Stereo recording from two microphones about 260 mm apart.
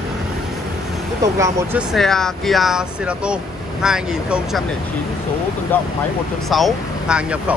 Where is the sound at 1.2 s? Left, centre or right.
Centre.